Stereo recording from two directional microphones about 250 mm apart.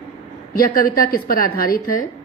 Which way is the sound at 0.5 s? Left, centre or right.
Left.